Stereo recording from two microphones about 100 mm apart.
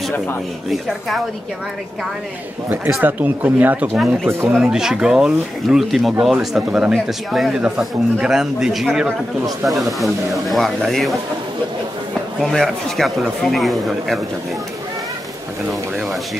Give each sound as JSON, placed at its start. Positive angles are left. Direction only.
{"t": 0.7, "sound": "speech", "side_deg": 0}
{"t": 3.0, "sound": "speech", "side_deg": -15}
{"t": 3.9, "sound": "speech", "side_deg": 0}
{"t": 4.3, "sound": "speech", "side_deg": -25}
{"t": 4.6, "sound": "speech", "side_deg": -5}
{"t": 12.4, "sound": "speech", "side_deg": 0}